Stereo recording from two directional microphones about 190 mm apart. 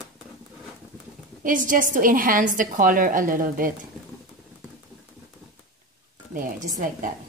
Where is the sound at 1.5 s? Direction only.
45° right (ahead or behind).